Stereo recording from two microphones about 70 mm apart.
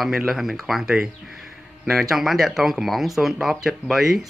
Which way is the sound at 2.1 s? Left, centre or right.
Centre.